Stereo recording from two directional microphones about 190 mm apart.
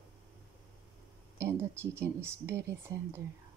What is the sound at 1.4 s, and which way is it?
Speech, 15° right (ahead or behind).